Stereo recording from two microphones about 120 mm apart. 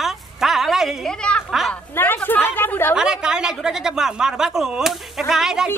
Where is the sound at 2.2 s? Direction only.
15° left (ahead or behind).